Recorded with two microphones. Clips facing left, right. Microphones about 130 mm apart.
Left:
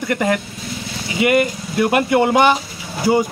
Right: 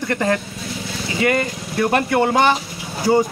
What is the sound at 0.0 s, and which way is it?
Speech, 10° left (ahead or behind).